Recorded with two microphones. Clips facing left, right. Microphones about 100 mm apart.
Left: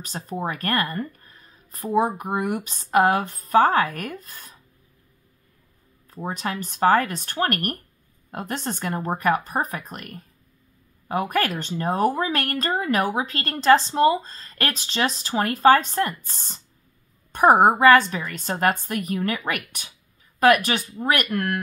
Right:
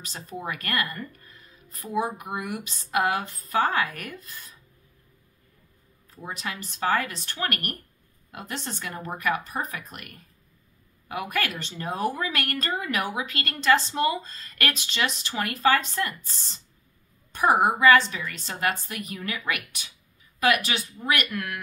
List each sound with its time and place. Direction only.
0.0 s speech: 45° left (ahead or behind)
6.0 s speech: 45° left (ahead or behind)